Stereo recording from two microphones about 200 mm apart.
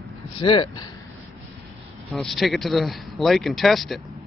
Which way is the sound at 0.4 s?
25° left (ahead or behind).